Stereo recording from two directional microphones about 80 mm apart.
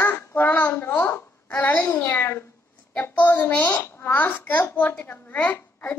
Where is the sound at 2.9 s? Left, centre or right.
Centre.